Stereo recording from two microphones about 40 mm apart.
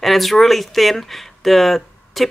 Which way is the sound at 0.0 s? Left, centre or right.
Centre.